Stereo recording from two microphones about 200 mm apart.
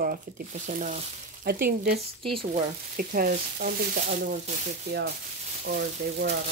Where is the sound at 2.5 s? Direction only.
45° right (ahead or behind).